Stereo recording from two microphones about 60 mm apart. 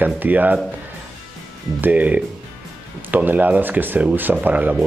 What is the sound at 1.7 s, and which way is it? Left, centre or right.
Speech, right.